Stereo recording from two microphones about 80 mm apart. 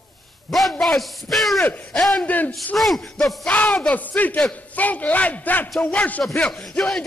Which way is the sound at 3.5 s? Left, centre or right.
Centre.